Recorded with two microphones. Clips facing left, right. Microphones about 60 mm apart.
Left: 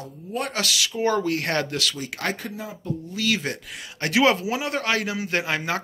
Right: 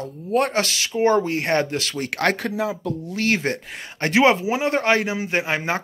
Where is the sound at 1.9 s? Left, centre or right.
Right.